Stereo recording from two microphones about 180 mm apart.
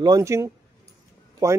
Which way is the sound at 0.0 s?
20° right (ahead or behind).